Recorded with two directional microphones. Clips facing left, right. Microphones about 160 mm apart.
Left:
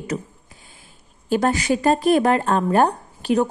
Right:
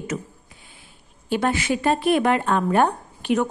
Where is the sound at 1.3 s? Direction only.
40° left (ahead or behind).